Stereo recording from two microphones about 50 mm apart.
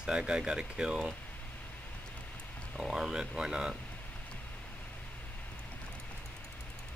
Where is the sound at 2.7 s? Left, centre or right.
Centre.